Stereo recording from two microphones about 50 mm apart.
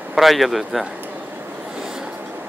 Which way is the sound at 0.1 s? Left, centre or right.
Centre.